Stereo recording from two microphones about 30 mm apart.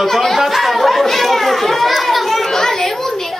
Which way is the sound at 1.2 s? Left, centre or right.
Centre.